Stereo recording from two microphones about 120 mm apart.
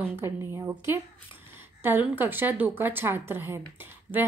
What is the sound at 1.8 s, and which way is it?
A woman's voice, 15° right (ahead or behind).